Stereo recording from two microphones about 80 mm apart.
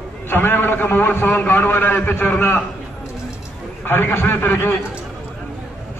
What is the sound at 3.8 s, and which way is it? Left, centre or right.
Speech, left.